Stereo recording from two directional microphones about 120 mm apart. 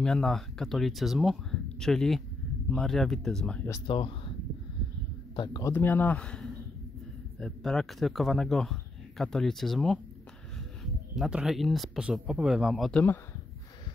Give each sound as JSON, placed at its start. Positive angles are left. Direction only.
{"t": 0.0, "sound": "speech", "side_deg": 5}
{"t": 3.8, "sound": "speech", "side_deg": 45}
{"t": 5.3, "sound": "a man's voice", "side_deg": 40}
{"t": 5.6, "sound": "speech", "side_deg": 20}
{"t": 11.1, "sound": "speech", "side_deg": -5}